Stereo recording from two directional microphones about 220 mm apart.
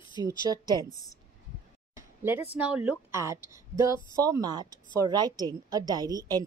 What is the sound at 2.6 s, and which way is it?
Speech, 5° right (ahead or behind).